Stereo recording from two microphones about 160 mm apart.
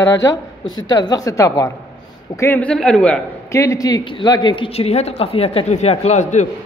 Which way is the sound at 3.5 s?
20° left (ahead or behind).